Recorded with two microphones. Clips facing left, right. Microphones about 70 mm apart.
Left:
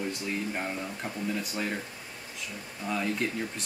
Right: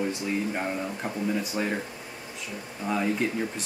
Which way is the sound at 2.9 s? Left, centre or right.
Centre.